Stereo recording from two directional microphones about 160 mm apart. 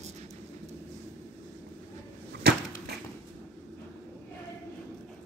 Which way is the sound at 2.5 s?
90° right.